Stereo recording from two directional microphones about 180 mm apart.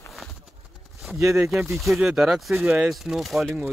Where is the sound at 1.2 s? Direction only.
15° right (ahead or behind).